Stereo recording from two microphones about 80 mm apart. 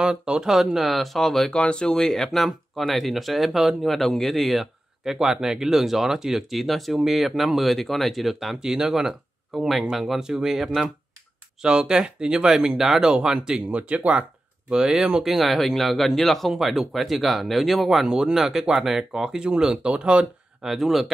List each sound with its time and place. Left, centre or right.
0.0 s speech: centre
20.7 s speech: centre